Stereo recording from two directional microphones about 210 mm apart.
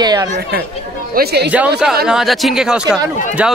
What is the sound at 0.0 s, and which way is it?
Speech, 20° right (ahead or behind).